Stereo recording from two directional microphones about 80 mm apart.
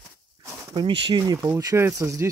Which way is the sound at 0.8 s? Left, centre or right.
Right.